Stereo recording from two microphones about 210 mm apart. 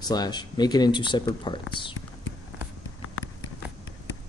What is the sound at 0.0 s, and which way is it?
Speech, 20° left (ahead or behind).